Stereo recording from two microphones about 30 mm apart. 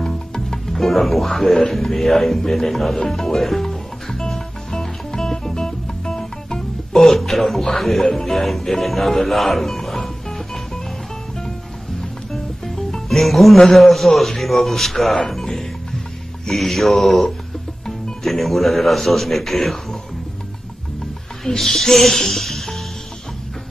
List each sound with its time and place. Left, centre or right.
0.0 s speech: centre
3.1 s music: centre
7.1 s a man's voice: centre
8.0 s a man's voice: centre
12.3 s music: centre
13.7 s a man's voice: centre
15.2 s music: centre
16.5 s a man's voice: centre
21.5 s speech: centre